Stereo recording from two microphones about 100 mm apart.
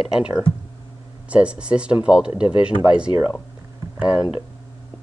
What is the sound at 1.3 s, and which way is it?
Speech, 10° right (ahead or behind).